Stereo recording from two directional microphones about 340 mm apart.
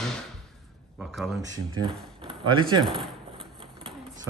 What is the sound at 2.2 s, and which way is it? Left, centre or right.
Speech, centre.